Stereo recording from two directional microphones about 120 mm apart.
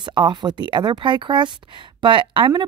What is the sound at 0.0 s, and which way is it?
A woman's voice, 40° right (ahead or behind).